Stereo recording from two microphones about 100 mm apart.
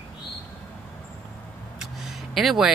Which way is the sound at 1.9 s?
Centre (ahead or behind).